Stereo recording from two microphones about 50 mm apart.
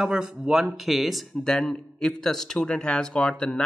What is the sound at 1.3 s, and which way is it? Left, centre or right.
Speech, centre.